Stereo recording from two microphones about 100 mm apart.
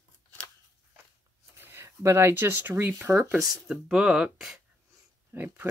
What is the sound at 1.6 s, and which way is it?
Speech, 25° right (ahead or behind).